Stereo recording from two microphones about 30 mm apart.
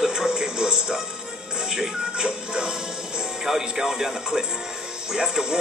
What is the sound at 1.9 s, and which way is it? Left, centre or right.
Speech, right.